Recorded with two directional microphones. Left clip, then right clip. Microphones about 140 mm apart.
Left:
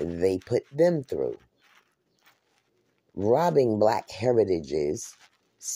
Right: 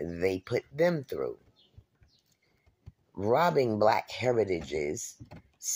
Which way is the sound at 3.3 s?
35° left (ahead or behind).